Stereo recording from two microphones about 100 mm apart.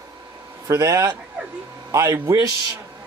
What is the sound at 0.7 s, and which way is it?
A man's voice, 30° right (ahead or behind).